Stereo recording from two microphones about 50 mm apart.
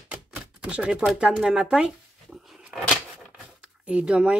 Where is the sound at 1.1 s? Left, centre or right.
Centre.